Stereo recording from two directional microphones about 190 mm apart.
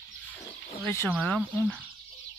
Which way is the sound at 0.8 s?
15° left (ahead or behind).